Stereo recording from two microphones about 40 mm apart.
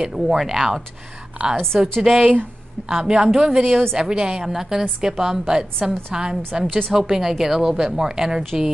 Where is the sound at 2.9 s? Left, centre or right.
Centre.